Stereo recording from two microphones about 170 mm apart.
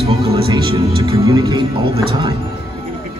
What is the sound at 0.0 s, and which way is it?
Music, 35° right (ahead or behind).